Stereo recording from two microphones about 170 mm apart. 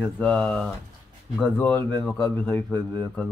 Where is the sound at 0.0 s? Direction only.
5° left (ahead or behind).